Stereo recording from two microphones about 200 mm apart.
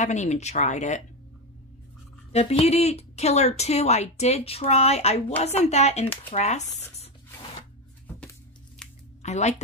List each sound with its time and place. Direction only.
0.0 s a woman's voice: 35° left (ahead or behind)
2.3 s a woman's voice: 30° left (ahead or behind)
8.8 s a sound: 5° left (ahead or behind)
9.2 s speech: 35° left (ahead or behind)